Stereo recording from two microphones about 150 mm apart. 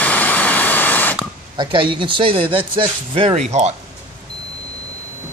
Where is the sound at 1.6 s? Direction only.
35° right (ahead or behind).